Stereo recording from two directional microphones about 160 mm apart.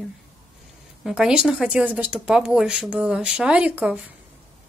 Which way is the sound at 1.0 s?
5° right (ahead or behind).